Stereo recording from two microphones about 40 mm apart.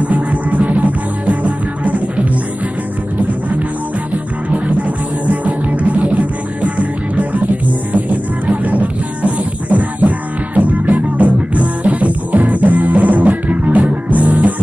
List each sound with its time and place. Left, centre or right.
0.1 s music: right
5.2 s music: right